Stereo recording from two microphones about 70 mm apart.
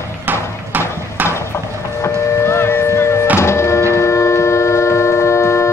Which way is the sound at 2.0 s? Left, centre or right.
Left.